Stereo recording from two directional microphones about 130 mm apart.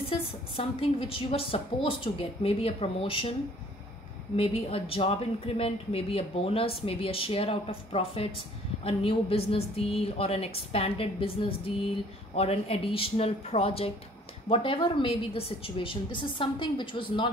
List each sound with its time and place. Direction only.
0.1 s speech: 45° left (ahead or behind)
4.4 s a woman's voice: 45° left (ahead or behind)